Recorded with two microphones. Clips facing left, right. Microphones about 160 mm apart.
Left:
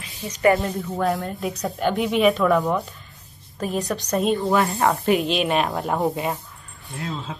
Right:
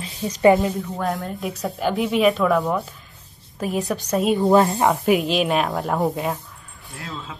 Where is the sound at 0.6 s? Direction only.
Centre (ahead or behind).